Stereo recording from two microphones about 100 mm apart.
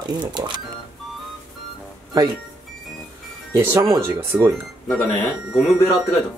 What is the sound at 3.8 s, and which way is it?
Speech, 30° right (ahead or behind).